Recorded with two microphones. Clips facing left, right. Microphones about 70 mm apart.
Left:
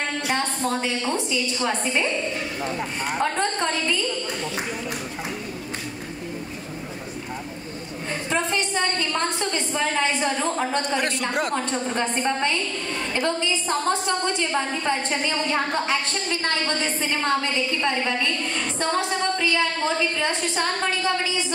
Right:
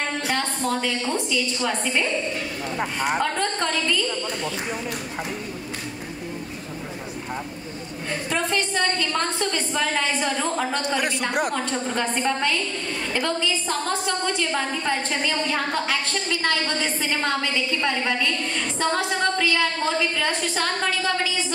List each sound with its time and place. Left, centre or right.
0.7 s a woman's voice: left
3.2 s a woman's voice: left
8.3 s a woman's voice: left
11.0 s a man's voice: centre
11.9 s a woman's voice: left
20.2 s a woman's voice: left